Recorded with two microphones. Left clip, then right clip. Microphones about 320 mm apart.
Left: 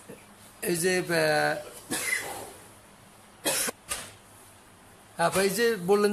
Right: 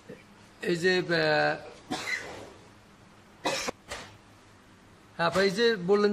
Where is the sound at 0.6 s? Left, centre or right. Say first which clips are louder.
Right 1 dB; centre.